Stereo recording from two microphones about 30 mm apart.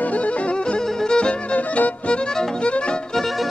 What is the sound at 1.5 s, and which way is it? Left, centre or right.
Music, left.